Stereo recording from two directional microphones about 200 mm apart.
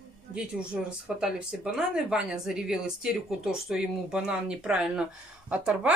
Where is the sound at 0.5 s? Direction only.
5° right (ahead or behind).